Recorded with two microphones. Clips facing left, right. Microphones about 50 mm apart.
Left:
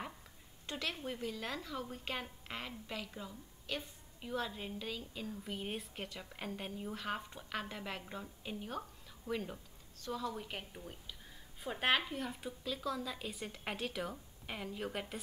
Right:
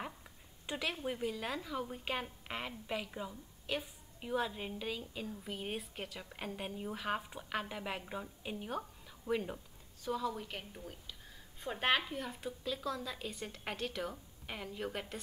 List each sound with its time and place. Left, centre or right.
0.7 s a woman's voice: centre
10.3 s a woman's voice: centre